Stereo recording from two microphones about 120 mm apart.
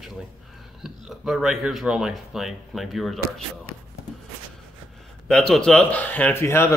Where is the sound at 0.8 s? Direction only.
Centre (ahead or behind).